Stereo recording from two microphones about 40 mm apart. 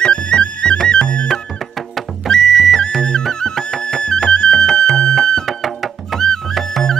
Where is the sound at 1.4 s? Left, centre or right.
Centre.